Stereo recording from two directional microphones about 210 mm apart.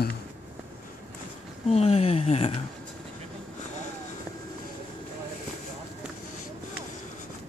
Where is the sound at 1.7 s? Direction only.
30° left (ahead or behind).